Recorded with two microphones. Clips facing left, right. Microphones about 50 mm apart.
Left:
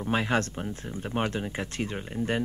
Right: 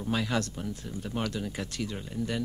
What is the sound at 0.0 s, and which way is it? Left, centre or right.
Speech, left.